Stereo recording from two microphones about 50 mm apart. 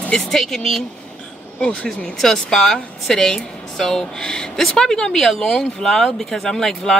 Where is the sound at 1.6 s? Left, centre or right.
Left.